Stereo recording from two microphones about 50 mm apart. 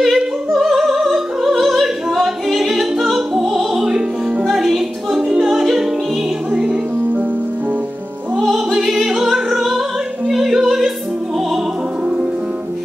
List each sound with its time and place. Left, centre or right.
0.0 s opera: centre
1.6 s singing: centre
4.6 s music: centre
6.5 s music: right
8.5 s music: centre
10.2 s opera: centre